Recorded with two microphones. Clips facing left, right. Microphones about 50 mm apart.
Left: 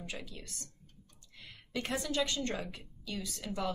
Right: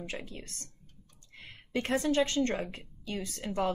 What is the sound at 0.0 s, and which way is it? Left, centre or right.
A woman's voice, right.